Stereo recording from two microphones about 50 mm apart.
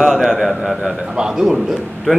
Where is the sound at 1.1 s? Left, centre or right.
Centre.